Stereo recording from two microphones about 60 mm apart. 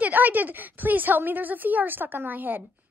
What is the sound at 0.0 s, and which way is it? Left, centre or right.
A woman's voice, right.